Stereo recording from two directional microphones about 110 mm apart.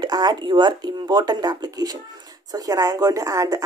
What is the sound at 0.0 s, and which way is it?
Speech, 40° right (ahead or behind).